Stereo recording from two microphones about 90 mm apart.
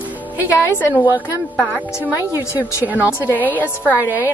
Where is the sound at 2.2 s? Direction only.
25° right (ahead or behind).